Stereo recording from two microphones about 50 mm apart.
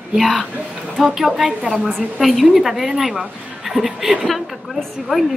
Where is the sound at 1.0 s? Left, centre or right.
Centre.